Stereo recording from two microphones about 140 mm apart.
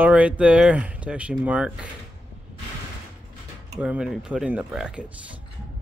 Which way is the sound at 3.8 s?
5° right (ahead or behind).